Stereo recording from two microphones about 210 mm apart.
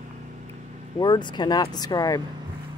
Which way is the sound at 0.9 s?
20° left (ahead or behind).